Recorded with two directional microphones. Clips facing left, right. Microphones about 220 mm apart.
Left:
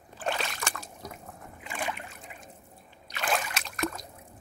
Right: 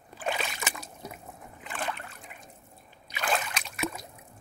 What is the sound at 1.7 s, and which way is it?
Boat, 10° left (ahead or behind).